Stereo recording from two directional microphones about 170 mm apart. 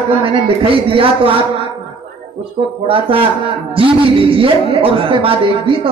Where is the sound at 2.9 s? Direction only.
30° right (ahead or behind).